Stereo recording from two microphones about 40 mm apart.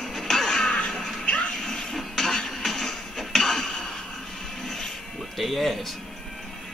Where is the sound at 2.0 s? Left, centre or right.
Centre.